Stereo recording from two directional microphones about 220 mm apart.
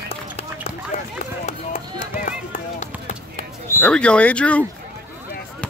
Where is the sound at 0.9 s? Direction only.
35° left (ahead or behind).